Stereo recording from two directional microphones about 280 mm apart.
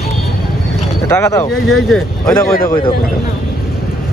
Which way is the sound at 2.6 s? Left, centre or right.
Centre.